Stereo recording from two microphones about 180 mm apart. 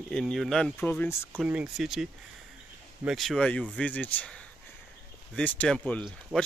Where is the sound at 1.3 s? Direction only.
5° right (ahead or behind).